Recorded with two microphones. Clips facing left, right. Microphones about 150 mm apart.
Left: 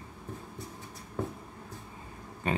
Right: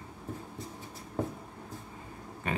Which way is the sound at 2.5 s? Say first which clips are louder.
Left 3 dB; 30° left (ahead or behind).